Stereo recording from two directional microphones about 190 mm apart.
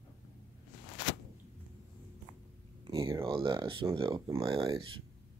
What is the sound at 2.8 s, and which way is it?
Speech, 20° right (ahead or behind).